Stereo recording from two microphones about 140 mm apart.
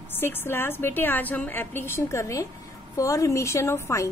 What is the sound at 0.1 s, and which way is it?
A woman's voice, 15° left (ahead or behind).